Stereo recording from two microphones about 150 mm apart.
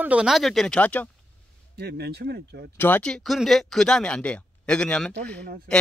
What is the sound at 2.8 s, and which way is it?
Speech, 10° left (ahead or behind).